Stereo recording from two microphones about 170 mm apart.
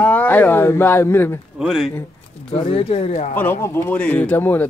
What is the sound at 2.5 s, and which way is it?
Speech, 35° left (ahead or behind).